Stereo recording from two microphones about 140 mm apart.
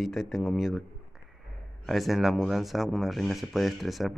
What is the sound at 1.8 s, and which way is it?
Speech, centre (ahead or behind).